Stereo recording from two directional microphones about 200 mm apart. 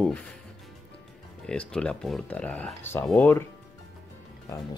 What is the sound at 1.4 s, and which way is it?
Speech, 5° left (ahead or behind).